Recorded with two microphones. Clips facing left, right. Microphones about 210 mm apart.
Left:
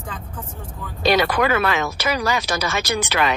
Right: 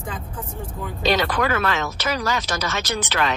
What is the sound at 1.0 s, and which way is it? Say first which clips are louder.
Speech: left 3 dB; 10° left (ahead or behind).